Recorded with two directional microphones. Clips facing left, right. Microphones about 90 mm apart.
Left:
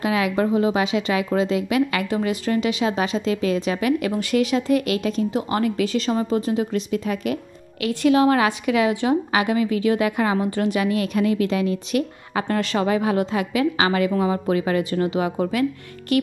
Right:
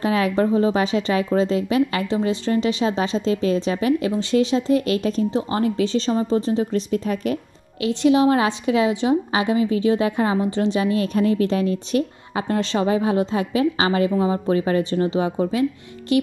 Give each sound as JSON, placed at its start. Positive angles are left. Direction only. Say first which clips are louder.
{"t": 0.0, "sound": "a woman's voice", "louder": "right 1 dB", "side_deg": -35}
{"t": 7.8, "sound": "a woman's voice", "louder": "right 1 dB", "side_deg": -25}